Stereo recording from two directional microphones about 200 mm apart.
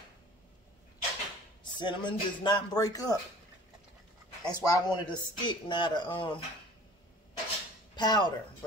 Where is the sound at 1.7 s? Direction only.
25° left (ahead or behind).